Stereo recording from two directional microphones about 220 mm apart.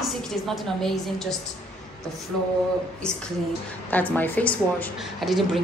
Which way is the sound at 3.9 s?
10° left (ahead or behind).